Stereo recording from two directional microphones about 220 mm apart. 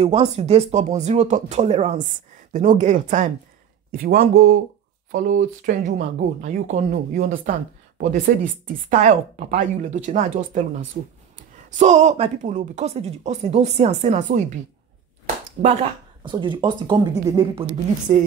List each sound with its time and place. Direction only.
0.0 s speech: 25° right (ahead or behind)
8.8 s speech: 30° right (ahead or behind)
15.6 s speech: 20° right (ahead or behind)
18.1 s speech: 30° right (ahead or behind)